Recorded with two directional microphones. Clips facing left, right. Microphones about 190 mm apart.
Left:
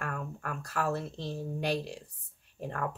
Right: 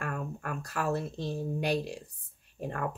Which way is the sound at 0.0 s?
15° right (ahead or behind).